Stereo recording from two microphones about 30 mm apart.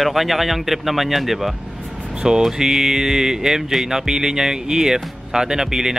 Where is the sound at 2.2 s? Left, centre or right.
Centre.